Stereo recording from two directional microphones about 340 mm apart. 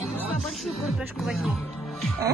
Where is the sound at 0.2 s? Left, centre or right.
Centre.